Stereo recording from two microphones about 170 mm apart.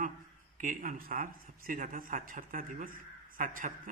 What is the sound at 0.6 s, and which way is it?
Speech, 50° right (ahead or behind).